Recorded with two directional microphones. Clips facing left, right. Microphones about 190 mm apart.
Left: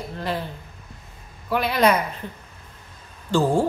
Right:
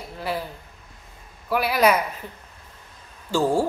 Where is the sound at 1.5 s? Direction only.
5° right (ahead or behind).